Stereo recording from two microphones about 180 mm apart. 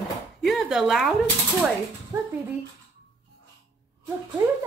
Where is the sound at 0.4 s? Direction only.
Centre (ahead or behind).